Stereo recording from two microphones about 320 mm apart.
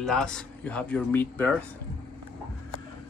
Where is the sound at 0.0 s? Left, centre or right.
Centre.